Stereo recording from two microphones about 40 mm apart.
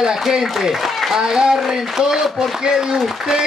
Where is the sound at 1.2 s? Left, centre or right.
Centre.